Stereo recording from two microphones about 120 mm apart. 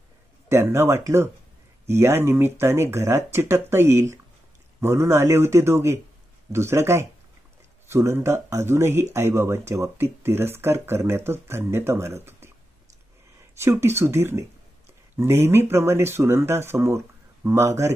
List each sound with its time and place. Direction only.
0.5 s speech: 20° right (ahead or behind)
13.6 s speech: 20° right (ahead or behind)